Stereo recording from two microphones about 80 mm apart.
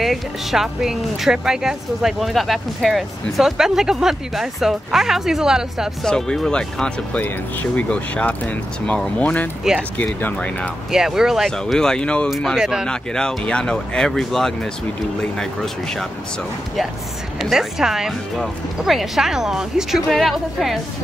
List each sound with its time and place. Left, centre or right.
0.0 s speech: centre
6.0 s speech: centre
10.9 s speech: centre
11.5 s speech: centre
12.5 s speech: centre
12.8 s speech: centre
17.4 s speech: centre